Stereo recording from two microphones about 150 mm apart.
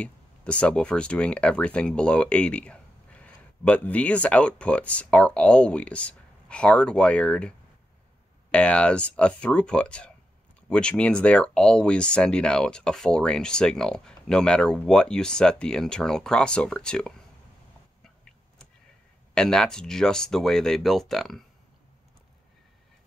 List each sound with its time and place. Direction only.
0.0 s speech: 10° left (ahead or behind)
19.3 s speech: 5° left (ahead or behind)